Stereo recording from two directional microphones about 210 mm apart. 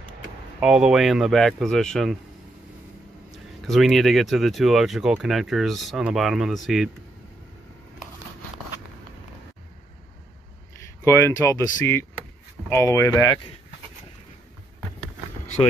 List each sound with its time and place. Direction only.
0.6 s speech: 5° right (ahead or behind)
3.3 s speech: centre (ahead or behind)
11.1 s speech: 15° left (ahead or behind)